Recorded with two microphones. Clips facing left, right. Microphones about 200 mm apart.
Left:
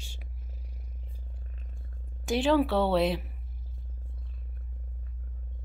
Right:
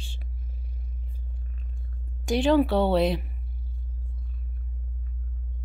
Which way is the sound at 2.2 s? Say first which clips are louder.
Right 3 dB; centre (ahead or behind).